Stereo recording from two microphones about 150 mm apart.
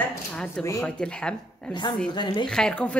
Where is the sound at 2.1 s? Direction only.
30° left (ahead or behind).